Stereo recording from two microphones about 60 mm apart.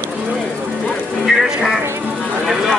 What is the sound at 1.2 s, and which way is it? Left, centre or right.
Music, centre.